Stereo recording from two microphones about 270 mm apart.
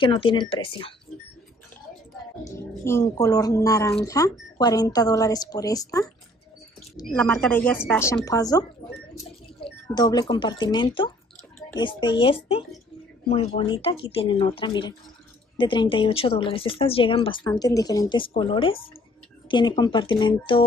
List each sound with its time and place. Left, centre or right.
0.0 s speech: centre
2.4 s speech: centre
9.7 s speech: centre